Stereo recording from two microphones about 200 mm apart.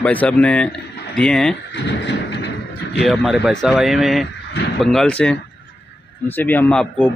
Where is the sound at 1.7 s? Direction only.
60° left (ahead or behind).